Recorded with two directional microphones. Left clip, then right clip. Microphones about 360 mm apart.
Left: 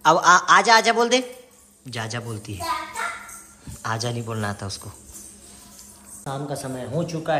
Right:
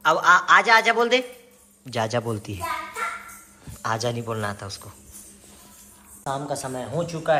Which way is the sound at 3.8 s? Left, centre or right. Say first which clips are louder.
Right 2 dB; centre.